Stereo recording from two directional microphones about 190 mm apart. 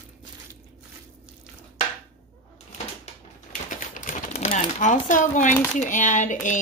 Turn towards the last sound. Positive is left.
turn(degrees=40)  # may be behind; listen again after turning